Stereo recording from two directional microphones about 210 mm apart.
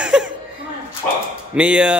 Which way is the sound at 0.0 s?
5° right (ahead or behind).